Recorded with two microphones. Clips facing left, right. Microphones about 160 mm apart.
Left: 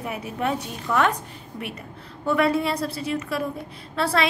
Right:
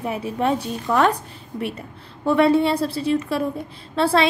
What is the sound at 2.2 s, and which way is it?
A woman's voice, 30° right (ahead or behind).